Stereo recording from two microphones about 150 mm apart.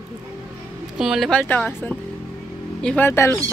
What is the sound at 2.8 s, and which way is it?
Speech, 5° left (ahead or behind).